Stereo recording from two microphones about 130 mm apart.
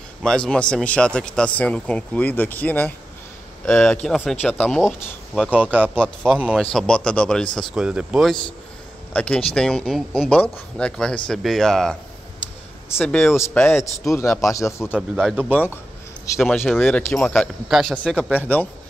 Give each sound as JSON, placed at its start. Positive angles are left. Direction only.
{"t": 0.2, "sound": "a man's voice", "side_deg": 5}
{"t": 5.9, "sound": "a man's voice", "side_deg": 5}
{"t": 6.3, "sound": "speech", "side_deg": -10}
{"t": 6.6, "sound": "a man's voice", "side_deg": 5}
{"t": 7.5, "sound": "speech", "side_deg": -5}
{"t": 8.3, "sound": "a man's voice", "side_deg": 10}
{"t": 13.1, "sound": "speech", "side_deg": 0}
{"t": 13.4, "sound": "speech", "side_deg": 20}
{"t": 15.0, "sound": "speech", "side_deg": 0}
{"t": 15.5, "sound": "a man's voice", "side_deg": 15}
{"t": 16.3, "sound": "a man's voice", "side_deg": 0}
{"t": 17.6, "sound": "speech", "side_deg": -5}
{"t": 17.9, "sound": "a man's voice", "side_deg": 10}